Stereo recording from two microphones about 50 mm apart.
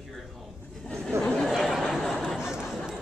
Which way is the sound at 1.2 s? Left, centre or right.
Centre.